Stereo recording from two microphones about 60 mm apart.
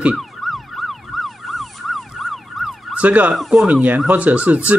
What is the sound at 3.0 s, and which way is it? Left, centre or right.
Speech, right.